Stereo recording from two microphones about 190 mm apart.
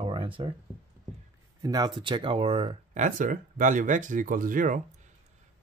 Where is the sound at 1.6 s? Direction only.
20° right (ahead or behind).